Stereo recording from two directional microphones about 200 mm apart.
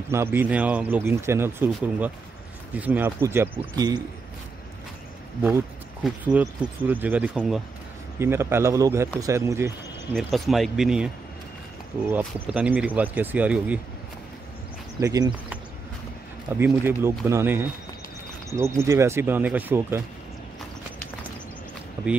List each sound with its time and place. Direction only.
0.1 s speech: 10° right (ahead or behind)
6.0 s speech: centre (ahead or behind)
10.1 s speech: centre (ahead or behind)
12.1 s speech: 10° right (ahead or behind)
15.0 s speech: 20° right (ahead or behind)
16.5 s speech: 10° right (ahead or behind)